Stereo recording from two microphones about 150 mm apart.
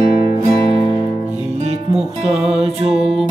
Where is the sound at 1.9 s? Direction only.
5° right (ahead or behind).